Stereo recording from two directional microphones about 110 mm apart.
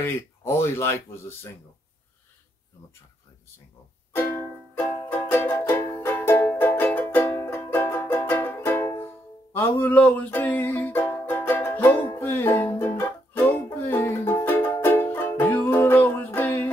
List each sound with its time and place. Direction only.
0.0 s speech: 25° left (ahead or behind)
4.1 s music: 20° left (ahead or behind)